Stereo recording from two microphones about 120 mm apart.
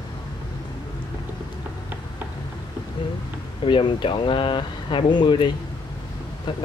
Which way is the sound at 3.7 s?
45° left (ahead or behind).